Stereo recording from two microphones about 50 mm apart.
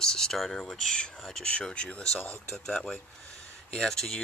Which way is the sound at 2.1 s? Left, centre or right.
Left.